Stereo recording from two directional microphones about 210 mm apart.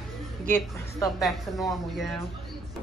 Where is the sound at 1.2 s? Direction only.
Centre (ahead or behind).